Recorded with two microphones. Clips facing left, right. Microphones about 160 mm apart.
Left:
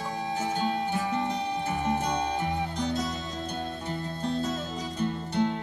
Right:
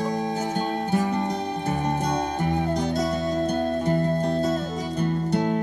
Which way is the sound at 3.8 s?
50° right (ahead or behind).